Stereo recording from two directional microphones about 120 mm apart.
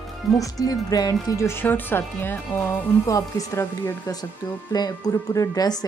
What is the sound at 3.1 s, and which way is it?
Speech, 25° left (ahead or behind).